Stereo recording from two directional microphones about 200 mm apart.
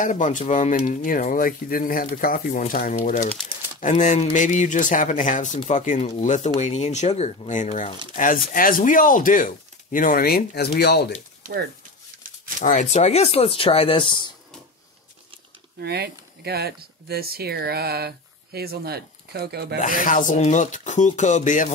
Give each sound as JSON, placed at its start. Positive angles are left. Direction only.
{"t": 0.0, "sound": "speech", "side_deg": 40}
{"t": 12.5, "sound": "speech", "side_deg": 40}
{"t": 15.8, "sound": "speech", "side_deg": -55}
{"t": 19.8, "sound": "speech", "side_deg": 40}